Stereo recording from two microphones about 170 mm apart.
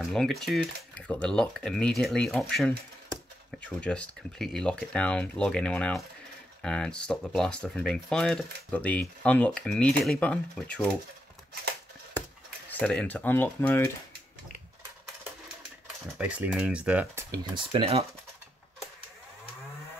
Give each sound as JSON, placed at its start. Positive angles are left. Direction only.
{"t": 0.0, "sound": "speech", "side_deg": 0}
{"t": 12.6, "sound": "speech", "side_deg": 10}
{"t": 16.2, "sound": "speech", "side_deg": -10}
{"t": 17.6, "sound": "speech", "side_deg": -35}